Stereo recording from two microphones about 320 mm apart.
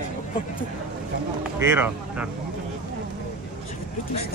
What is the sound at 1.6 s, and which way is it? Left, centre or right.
Speech, centre.